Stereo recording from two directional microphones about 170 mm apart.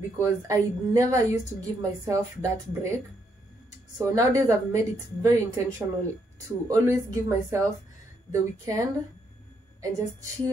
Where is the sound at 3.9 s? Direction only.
20° right (ahead or behind).